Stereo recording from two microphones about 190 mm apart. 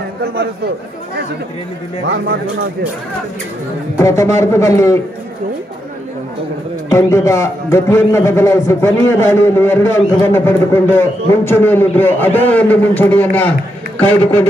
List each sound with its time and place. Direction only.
2.0 s speech: 55° right (ahead or behind)
4.0 s a man's voice: 15° left (ahead or behind)
6.9 s a man's voice: 15° left (ahead or behind)